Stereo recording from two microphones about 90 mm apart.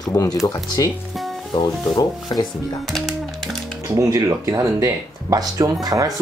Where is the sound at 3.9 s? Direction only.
35° right (ahead or behind).